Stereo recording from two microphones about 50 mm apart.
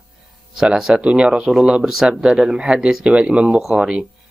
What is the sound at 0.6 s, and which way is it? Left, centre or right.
Speech, centre.